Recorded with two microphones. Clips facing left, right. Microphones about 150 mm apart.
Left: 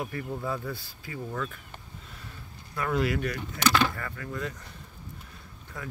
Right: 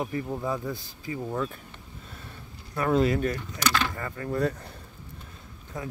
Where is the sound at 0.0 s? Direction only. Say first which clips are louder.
Right 3 dB; 25° right (ahead or behind).